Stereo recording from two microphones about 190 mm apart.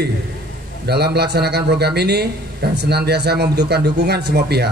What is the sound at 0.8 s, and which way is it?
Speech, 60° right (ahead or behind).